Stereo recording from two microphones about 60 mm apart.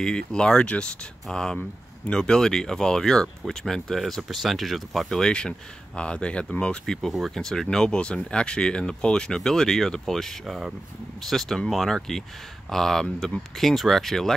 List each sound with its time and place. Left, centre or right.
0.0 s speech: centre
10.4 s speech: centre